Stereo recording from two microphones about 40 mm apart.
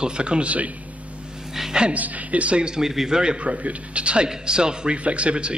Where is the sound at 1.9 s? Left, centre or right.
Right.